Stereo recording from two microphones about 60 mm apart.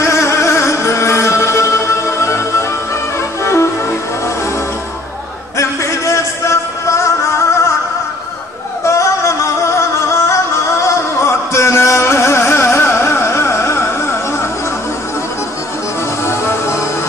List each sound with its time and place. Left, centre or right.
0.0 s music: left
5.6 s a sound: left
8.8 s music: left
16.3 s music: left